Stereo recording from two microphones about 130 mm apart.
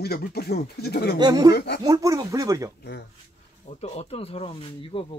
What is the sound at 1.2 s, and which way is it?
Speech, 30° right (ahead or behind).